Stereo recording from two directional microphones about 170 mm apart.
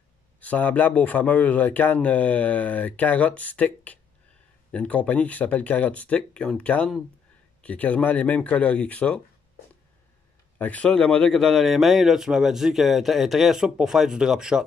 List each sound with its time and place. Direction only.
0.4 s speech: 10° left (ahead or behind)
10.6 s a man's voice: 10° left (ahead or behind)